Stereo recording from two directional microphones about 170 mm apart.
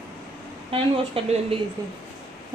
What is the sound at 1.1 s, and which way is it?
Speech, 35° right (ahead or behind).